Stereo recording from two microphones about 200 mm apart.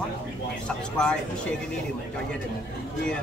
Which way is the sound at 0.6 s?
5° left (ahead or behind).